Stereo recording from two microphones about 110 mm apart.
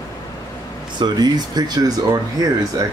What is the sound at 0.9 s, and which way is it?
Speech, 40° right (ahead or behind).